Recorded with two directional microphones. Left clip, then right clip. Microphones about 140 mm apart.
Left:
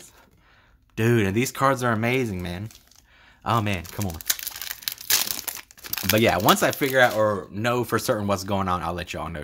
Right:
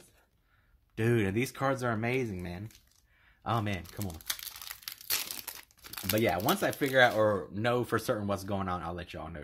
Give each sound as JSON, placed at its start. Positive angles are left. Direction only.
{"t": 0.9, "sound": "speech", "side_deg": 25}
{"t": 3.4, "sound": "speech", "side_deg": 20}
{"t": 4.6, "sound": "crumpling", "side_deg": 20}
{"t": 6.1, "sound": "speech", "side_deg": 30}
{"t": 6.9, "sound": "speech", "side_deg": -5}